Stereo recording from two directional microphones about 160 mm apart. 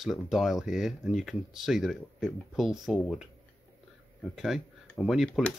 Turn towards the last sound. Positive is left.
turn(degrees=5)  # may be behind; listen again after turning